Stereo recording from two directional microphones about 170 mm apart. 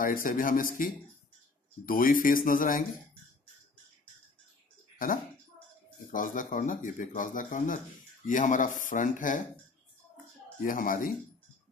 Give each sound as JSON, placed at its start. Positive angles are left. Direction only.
{"t": 0.0, "sound": "speech", "side_deg": 55}
{"t": 4.9, "sound": "a sound", "side_deg": 55}
{"t": 6.1, "sound": "speech", "side_deg": 50}
{"t": 10.6, "sound": "speech", "side_deg": 55}